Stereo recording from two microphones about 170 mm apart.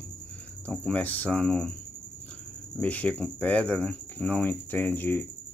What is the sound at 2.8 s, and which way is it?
Cricket, 10° left (ahead or behind).